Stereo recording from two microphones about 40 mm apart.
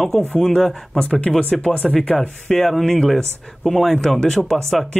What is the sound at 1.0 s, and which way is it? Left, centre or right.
Speech, left.